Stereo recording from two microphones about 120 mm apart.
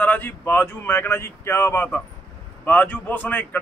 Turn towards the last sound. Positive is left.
turn(degrees=15)  # may be behind; listen again after turning